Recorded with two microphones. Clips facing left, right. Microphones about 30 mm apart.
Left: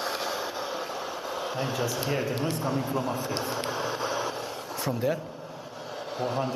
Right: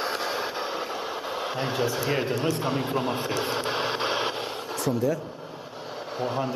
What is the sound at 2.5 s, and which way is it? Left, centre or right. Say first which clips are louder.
Speech: right 2 dB; right.